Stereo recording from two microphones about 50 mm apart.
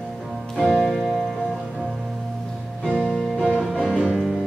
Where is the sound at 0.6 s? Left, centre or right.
Centre.